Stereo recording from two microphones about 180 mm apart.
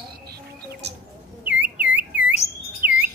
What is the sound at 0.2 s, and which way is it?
Music, 65° right (ahead or behind).